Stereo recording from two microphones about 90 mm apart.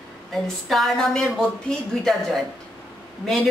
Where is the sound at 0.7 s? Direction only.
Centre (ahead or behind).